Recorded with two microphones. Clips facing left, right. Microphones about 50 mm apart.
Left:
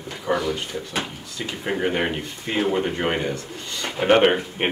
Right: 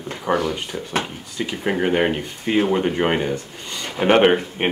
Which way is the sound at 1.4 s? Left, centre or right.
Centre.